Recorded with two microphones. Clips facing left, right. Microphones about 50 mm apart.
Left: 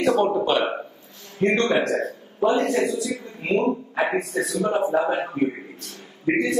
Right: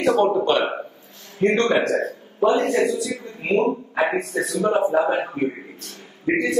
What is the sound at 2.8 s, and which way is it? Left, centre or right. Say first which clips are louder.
Speech: right 2 dB; right.